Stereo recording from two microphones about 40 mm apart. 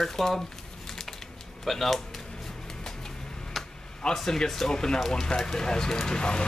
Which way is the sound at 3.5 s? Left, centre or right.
Centre.